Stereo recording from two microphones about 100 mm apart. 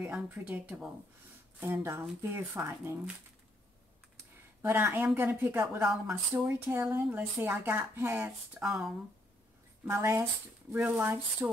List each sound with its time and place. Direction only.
0.0 s speech: 10° right (ahead or behind)
1.6 s speech: 25° right (ahead or behind)
4.6 s speech: 25° right (ahead or behind)
5.8 s speech: 5° right (ahead or behind)
6.4 s speech: 15° right (ahead or behind)
8.5 s speech: 5° right (ahead or behind)
9.8 s speech: 30° right (ahead or behind)